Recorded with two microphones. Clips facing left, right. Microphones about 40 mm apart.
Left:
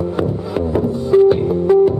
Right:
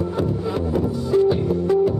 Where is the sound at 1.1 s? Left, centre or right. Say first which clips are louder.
Left 7 dB; left.